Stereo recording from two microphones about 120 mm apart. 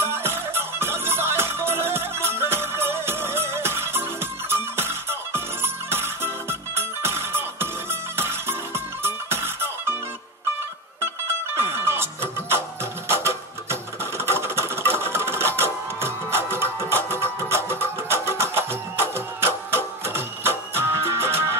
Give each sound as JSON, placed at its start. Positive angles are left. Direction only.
{"t": 0.0, "sound": "music", "side_deg": -20}
{"t": 11.5, "sound": "music", "side_deg": -20}
{"t": 13.1, "sound": "sewing machine", "side_deg": -20}